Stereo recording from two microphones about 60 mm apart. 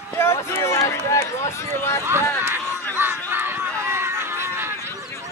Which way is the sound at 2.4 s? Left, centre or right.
Right.